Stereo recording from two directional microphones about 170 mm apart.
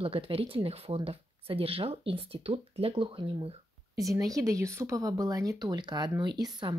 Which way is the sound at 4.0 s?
20° right (ahead or behind).